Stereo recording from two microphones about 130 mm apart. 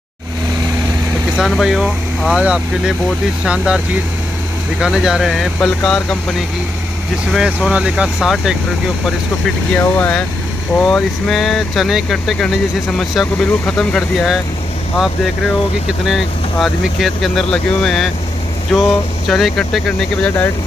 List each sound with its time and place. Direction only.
1.3 s speech: centre (ahead or behind)
9.8 s speech: 15° left (ahead or behind)
10.8 s speech: 5° left (ahead or behind)
16.1 s speech: centre (ahead or behind)